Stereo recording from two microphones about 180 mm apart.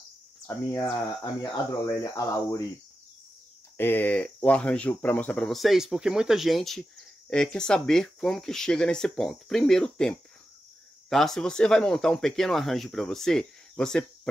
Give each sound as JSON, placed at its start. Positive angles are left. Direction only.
{"t": 0.5, "sound": "speech", "side_deg": 10}
{"t": 1.2, "sound": "speech", "side_deg": 20}
{"t": 3.7, "sound": "speech", "side_deg": 10}